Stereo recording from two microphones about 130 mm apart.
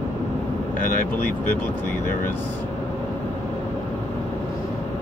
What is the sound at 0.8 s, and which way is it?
Speech, 90° left.